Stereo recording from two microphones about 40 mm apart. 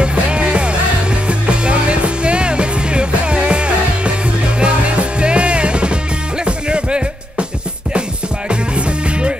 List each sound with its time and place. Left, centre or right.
0.0 s music: right
8.5 s music: right